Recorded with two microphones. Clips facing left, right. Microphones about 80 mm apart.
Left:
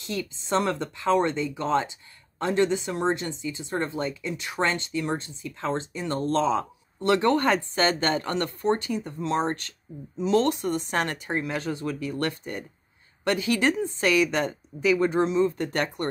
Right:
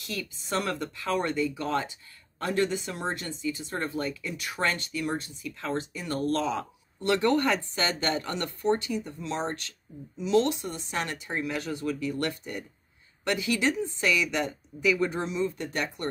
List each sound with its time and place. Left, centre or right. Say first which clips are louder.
0.0 s speech: left 5 dB; left